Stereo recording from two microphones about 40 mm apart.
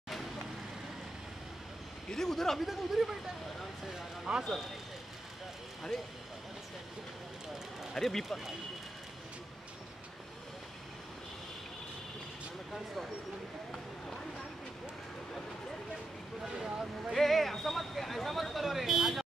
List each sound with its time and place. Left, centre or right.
2.0 s a man's voice: centre
2.6 s speech: centre
4.3 s speech: centre
7.9 s speech: centre
12.7 s speech: centre
16.5 s a sound: centre
17.1 s a sound: centre